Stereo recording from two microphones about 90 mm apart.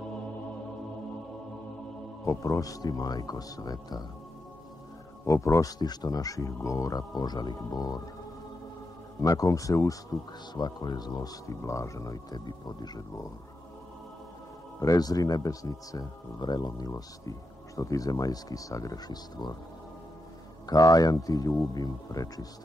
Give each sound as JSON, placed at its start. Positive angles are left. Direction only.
{"t": 2.2, "sound": "speech", "side_deg": 35}
{"t": 5.2, "sound": "speech", "side_deg": 35}
{"t": 9.2, "sound": "speech", "side_deg": 40}
{"t": 10.5, "sound": "speech", "side_deg": 50}
{"t": 14.8, "sound": "speech", "side_deg": 45}
{"t": 20.6, "sound": "speech", "side_deg": 45}